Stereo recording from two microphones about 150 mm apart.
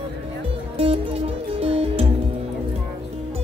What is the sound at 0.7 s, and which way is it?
Music, 40° right (ahead or behind).